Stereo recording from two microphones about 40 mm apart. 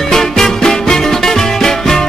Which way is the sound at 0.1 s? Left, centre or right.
Centre.